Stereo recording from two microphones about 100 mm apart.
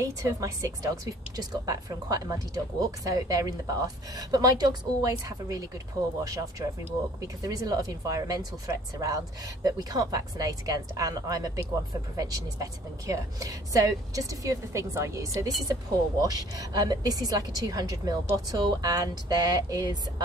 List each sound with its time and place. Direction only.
0.0 s speech: 35° right (ahead or behind)
7.4 s speech: 40° right (ahead or behind)